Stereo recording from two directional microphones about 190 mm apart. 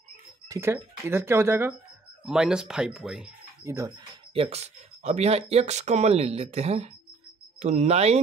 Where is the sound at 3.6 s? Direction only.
15° right (ahead or behind).